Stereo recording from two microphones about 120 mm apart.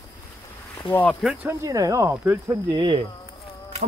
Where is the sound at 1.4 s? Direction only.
25° right (ahead or behind).